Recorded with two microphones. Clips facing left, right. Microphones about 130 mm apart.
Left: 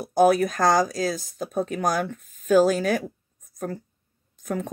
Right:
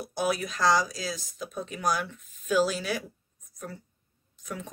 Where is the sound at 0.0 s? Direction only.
45° left (ahead or behind).